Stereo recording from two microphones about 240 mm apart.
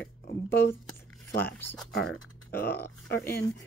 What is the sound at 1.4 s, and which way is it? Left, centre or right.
Speech, centre.